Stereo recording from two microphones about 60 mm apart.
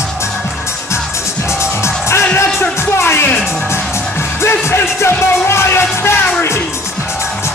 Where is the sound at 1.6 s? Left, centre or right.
Left.